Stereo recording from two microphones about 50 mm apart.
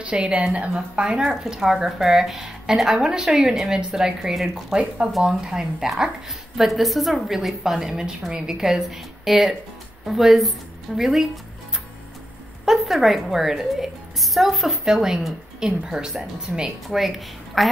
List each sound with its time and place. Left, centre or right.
0.0 s a woman's voice: right
1.3 s a woman's voice: centre
5.5 s a woman's voice: centre
12.6 s a woman's voice: centre
14.9 s a woman's voice: centre